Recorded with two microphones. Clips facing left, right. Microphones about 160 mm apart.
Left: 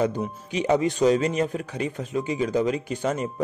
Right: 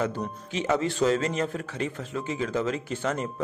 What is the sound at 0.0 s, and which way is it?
A man's voice, 15° left (ahead or behind).